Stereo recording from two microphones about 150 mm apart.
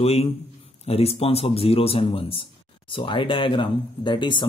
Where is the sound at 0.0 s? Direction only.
45° left (ahead or behind).